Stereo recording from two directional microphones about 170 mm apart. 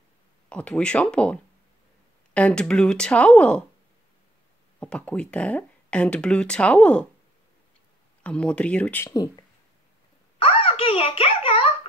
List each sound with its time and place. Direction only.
0.5 s speech: 5° left (ahead or behind)
4.7 s speech: 5° left (ahead or behind)
8.2 s speech: 5° left (ahead or behind)
10.4 s a sound: 35° left (ahead or behind)